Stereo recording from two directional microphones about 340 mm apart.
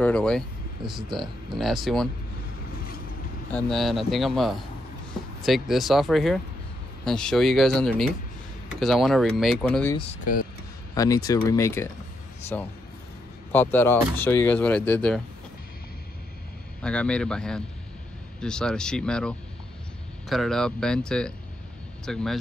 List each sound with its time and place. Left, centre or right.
0.0 s speech: centre
3.5 s speech: centre
9.9 s speech: left
11.0 s speech: centre
16.8 s speech: centre